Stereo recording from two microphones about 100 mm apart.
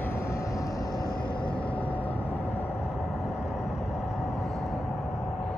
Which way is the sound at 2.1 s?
75° left (ahead or behind).